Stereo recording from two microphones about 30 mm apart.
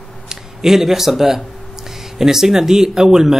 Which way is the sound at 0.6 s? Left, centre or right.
Centre.